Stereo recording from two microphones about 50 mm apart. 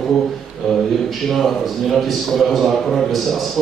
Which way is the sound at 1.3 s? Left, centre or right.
Centre.